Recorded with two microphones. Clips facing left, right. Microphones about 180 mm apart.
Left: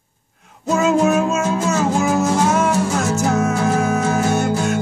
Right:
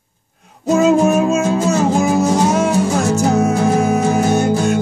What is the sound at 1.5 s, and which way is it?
Music, 35° right (ahead or behind).